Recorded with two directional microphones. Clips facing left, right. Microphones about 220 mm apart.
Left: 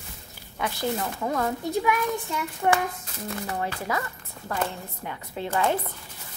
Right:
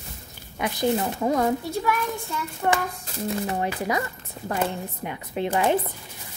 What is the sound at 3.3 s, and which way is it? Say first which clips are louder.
A woman's voice: right 4 dB; 25° right (ahead or behind).